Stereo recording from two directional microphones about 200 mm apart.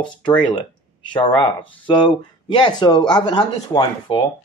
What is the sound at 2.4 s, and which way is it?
Speech, 25° left (ahead or behind).